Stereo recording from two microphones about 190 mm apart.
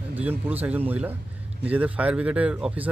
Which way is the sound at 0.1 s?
10° right (ahead or behind).